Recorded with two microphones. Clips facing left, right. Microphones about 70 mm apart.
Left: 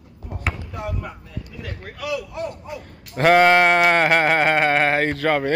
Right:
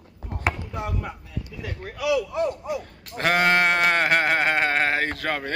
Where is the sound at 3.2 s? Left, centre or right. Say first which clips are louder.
Left 6 dB; left.